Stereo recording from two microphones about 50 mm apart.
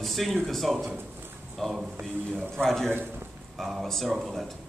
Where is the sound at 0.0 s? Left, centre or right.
Centre.